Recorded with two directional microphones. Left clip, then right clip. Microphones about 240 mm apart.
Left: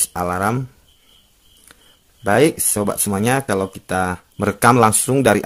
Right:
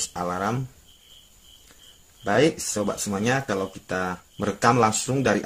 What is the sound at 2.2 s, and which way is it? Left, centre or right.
Speech, left.